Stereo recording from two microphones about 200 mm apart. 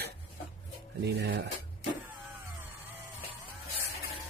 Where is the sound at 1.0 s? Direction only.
55° right (ahead or behind).